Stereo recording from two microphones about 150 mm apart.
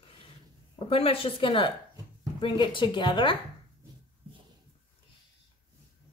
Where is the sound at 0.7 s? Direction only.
40° left (ahead or behind).